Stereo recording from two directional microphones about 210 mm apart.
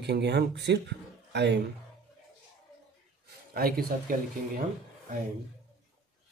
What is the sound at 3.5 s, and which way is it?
Speech, 45° right (ahead or behind).